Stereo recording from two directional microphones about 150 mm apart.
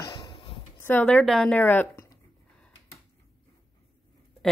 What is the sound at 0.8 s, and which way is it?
Speech, 10° left (ahead or behind).